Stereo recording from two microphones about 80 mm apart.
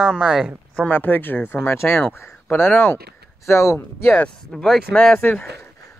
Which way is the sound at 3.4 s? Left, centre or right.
Left.